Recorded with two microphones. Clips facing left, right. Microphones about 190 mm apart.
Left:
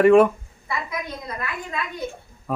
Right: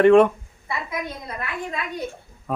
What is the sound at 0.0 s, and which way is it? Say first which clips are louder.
Speech: even; 5° left (ahead or behind).